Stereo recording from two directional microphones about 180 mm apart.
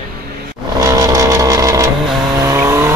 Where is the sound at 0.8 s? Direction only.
20° right (ahead or behind).